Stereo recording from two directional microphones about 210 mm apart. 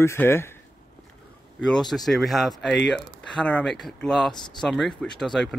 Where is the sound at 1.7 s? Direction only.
Centre (ahead or behind).